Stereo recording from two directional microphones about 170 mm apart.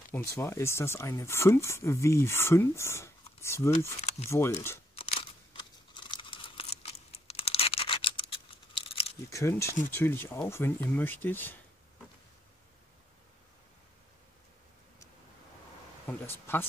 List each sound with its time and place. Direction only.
0.1 s speech: 15° left (ahead or behind)
4.9 s a sound: 35° left (ahead or behind)
9.3 s speech: 15° left (ahead or behind)
16.1 s speech: 15° left (ahead or behind)